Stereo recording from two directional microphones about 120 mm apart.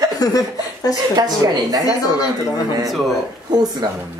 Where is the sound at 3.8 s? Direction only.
35° right (ahead or behind).